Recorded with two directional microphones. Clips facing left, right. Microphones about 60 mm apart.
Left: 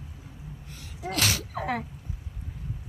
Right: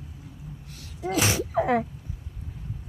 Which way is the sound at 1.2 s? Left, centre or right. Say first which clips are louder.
Right 5 dB; right.